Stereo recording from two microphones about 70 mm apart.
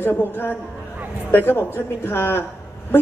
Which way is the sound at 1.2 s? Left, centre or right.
Left.